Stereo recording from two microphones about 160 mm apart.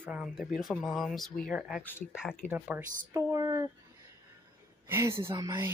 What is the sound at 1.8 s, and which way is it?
Speech, 10° left (ahead or behind).